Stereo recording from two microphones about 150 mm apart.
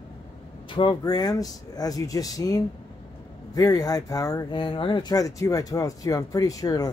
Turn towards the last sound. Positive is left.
turn(degrees=25)  # may be behind; listen again after turning